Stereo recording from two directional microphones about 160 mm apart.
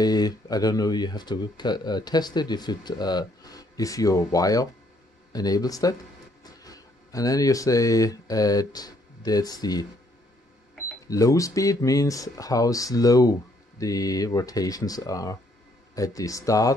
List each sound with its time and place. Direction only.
0.0 s speech: 25° left (ahead or behind)
11.1 s speech: 20° left (ahead or behind)